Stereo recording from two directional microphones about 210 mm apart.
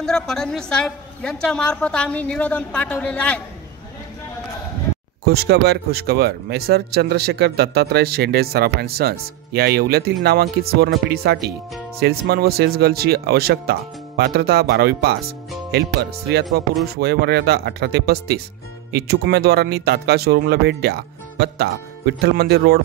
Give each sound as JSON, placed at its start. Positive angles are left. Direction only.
{"t": 0.0, "sound": "a woman's voice", "side_deg": 5}
{"t": 5.2, "sound": "speech", "side_deg": -50}